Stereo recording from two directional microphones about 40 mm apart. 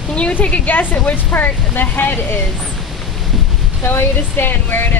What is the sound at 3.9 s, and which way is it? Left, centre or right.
Speech, left.